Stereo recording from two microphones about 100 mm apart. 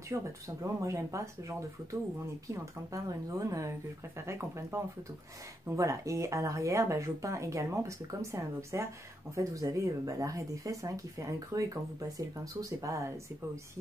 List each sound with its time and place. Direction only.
0.1 s speech: 30° right (ahead or behind)